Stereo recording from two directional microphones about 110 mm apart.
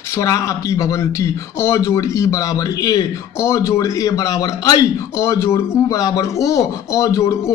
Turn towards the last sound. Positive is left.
turn(degrees=25)  # may be behind; listen again after turning